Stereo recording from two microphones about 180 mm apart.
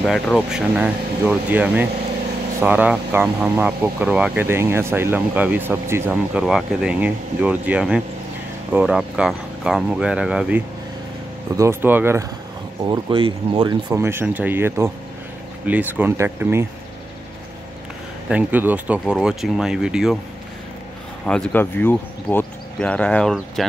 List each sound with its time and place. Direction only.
0.0 s speech: 5° left (ahead or behind)
11.5 s speech: 15° right (ahead or behind)
12.8 s speech: 25° right (ahead or behind)
13.8 s speech: 15° right (ahead or behind)
18.3 s speech: 10° right (ahead or behind)
21.3 s speech: 5° left (ahead or behind)